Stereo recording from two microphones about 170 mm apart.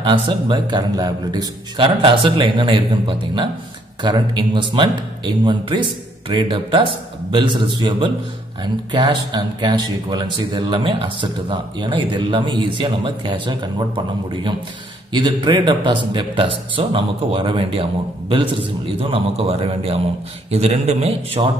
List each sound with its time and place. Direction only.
0.0 s a man's voice: 30° right (ahead or behind)